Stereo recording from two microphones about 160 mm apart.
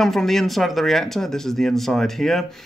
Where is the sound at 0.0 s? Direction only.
Centre (ahead or behind).